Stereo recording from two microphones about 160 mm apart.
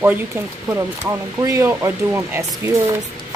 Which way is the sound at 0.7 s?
20° right (ahead or behind).